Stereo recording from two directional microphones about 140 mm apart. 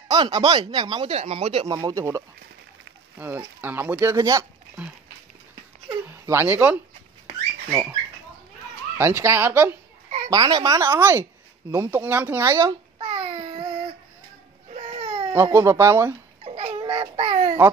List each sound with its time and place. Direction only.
0.1 s speech: 30° right (ahead or behind)
1.7 s speech: 25° right (ahead or behind)
6.0 s speech: 20° right (ahead or behind)
10.0 s children playing: 60° right (ahead or behind)
10.3 s speech: 30° right (ahead or behind)
13.0 s a sound: 50° right (ahead or behind)
15.0 s baby cry: 50° right (ahead or behind)
15.3 s speech: 15° right (ahead or behind)
16.4 s baby cry: 45° right (ahead or behind)